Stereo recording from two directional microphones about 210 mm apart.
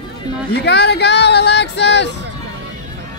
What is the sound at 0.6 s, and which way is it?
Speech, 50° left (ahead or behind).